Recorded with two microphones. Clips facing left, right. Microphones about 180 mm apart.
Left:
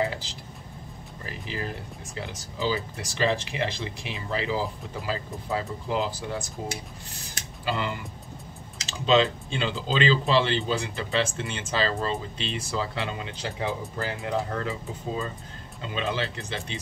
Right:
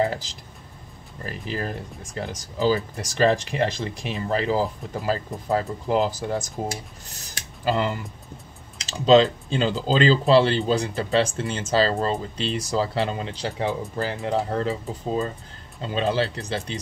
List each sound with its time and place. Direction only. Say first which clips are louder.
1.2 s speech: right 5 dB; 45° right (ahead or behind)
7.6 s speech: right 6 dB; 40° right (ahead or behind)